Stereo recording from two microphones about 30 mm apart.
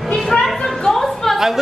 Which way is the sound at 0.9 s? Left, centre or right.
Centre.